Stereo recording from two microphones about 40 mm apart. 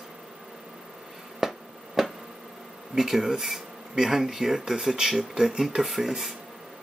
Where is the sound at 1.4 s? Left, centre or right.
Centre.